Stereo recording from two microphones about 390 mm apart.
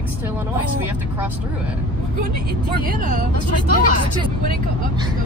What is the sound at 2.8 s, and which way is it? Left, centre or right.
Speech, right.